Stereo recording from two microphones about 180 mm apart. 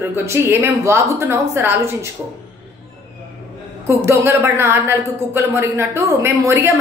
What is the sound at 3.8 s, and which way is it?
A woman's voice, 15° right (ahead or behind).